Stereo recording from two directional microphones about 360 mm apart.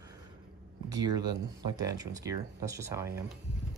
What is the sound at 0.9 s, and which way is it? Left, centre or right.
Speech, centre.